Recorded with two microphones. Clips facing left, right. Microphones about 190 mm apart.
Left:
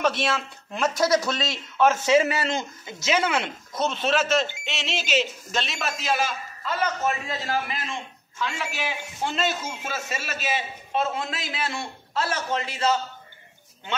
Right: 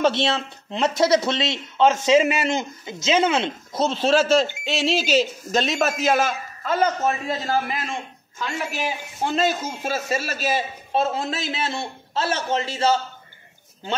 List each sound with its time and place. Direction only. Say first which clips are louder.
0.0 s speech: right 4 dB; 25° right (ahead or behind); by 6.9 s 50° right (ahead or behind)
7.1 s a man's voice: right 4 dB; 40° right (ahead or behind)